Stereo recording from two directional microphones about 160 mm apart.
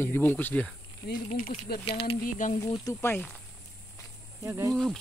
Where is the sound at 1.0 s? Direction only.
60° left (ahead or behind).